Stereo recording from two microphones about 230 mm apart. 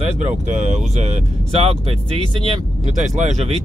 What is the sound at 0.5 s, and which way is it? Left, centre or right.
Speech, right.